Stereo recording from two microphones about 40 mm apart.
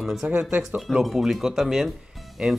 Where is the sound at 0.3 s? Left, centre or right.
Right.